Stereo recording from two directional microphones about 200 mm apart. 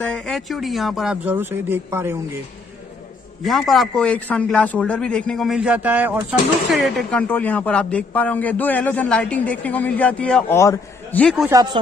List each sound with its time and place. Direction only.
0.0 s a man's voice: 5° left (ahead or behind)
3.4 s a man's voice: centre (ahead or behind)
6.8 s a man's voice: centre (ahead or behind)
11.4 s speech: 20° right (ahead or behind)